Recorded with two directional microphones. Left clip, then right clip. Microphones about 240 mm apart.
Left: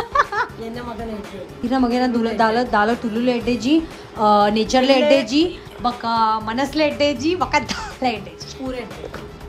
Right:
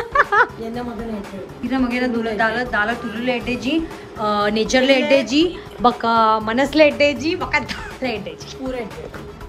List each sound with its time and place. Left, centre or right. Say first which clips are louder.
0.1 s music: right 4 dB; centre
1.7 s a woman's voice: left 2 dB; centre